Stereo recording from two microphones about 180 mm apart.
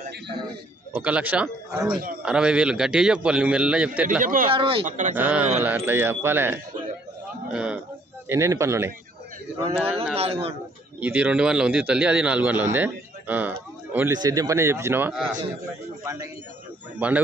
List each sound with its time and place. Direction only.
0.9 s a man's voice: 10° right (ahead or behind)
4.2 s speech: 50° right (ahead or behind)
4.5 s speech: 30° right (ahead or behind)
4.8 s speech: 45° right (ahead or behind)
5.1 s a man's voice: 10° right (ahead or behind)
8.3 s a man's voice: 15° right (ahead or behind)
10.1 s speech: 35° right (ahead or behind)
11.0 s a man's voice: 10° right (ahead or behind)
14.1 s a man's voice: 20° right (ahead or behind)